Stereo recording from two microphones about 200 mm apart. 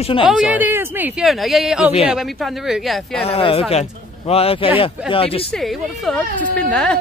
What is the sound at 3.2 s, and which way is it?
A man's voice, 30° left (ahead or behind).